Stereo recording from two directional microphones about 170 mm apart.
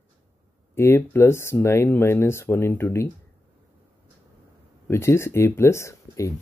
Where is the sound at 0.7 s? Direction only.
15° left (ahead or behind).